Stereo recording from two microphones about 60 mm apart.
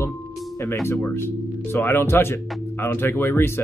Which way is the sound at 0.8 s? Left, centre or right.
Left.